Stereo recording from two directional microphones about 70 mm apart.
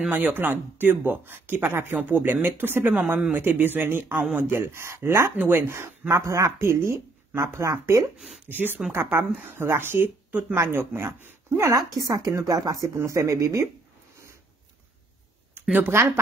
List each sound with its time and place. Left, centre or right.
0.0 s speech: right
4.1 s speech: centre
4.5 s speech: right
5.3 s speech: right
5.7 s speech: right
8.5 s speech: right
11.2 s a sound: right
11.7 s a woman's voice: right
12.9 s speech: right
15.7 s speech: right